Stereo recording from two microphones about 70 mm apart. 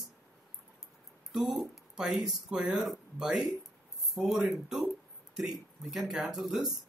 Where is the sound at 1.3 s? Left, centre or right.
Centre.